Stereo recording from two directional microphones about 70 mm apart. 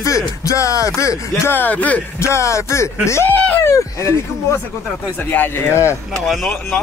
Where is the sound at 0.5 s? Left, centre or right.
Left.